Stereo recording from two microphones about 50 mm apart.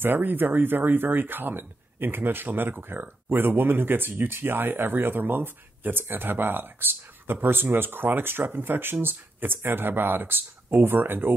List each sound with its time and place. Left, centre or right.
0.0 s speech: right